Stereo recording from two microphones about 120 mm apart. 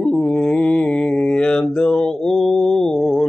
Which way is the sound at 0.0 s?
5° left (ahead or behind).